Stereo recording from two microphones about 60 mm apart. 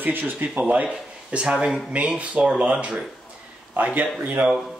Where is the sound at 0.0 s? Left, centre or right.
Right.